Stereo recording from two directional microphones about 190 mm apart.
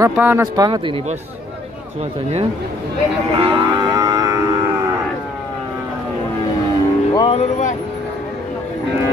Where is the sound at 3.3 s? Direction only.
20° right (ahead or behind).